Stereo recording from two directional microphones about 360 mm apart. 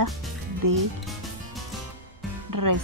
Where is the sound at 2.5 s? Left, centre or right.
Right.